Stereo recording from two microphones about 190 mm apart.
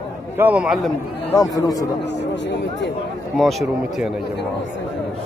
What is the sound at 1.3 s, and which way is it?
Speech, 20° left (ahead or behind).